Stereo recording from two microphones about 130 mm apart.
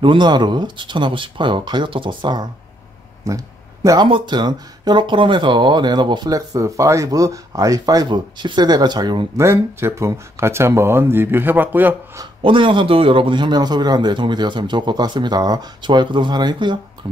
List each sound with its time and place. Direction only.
0.0 s speech: 35° right (ahead or behind)
3.3 s a sound: 25° right (ahead or behind)
4.1 s speech: 35° right (ahead or behind)
9.4 s speech: 20° right (ahead or behind)
12.4 s speech: 40° right (ahead or behind)